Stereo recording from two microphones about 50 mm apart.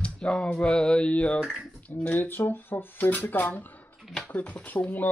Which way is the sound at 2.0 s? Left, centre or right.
Left.